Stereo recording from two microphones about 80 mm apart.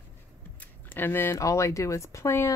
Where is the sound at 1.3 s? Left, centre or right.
Left.